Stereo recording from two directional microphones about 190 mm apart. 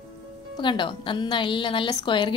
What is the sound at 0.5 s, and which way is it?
A woman's voice, 25° left (ahead or behind).